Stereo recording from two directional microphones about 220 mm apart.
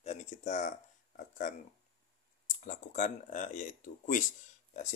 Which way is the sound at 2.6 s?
35° left (ahead or behind).